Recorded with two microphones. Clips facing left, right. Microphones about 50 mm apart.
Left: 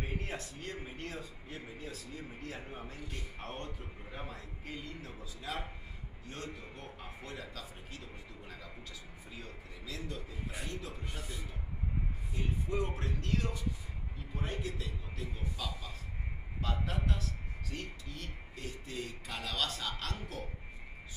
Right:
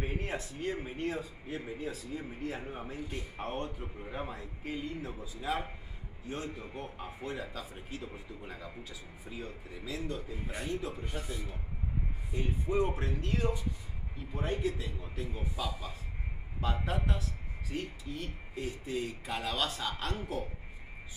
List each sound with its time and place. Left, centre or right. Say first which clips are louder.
0.0 s a man's voice: right 4 dB; centre